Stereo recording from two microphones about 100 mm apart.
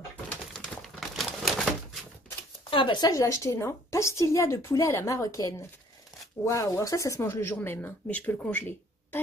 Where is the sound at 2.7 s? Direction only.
55° left (ahead or behind).